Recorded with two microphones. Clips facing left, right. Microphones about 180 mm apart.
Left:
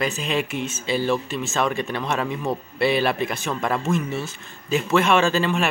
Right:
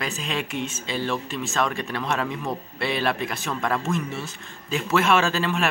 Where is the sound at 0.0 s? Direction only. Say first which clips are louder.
Left 5 dB; 5° left (ahead or behind).